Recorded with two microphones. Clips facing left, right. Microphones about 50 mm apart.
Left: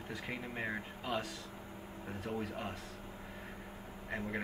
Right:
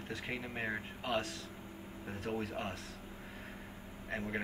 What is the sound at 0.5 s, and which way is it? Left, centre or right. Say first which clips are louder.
Speech: even; centre.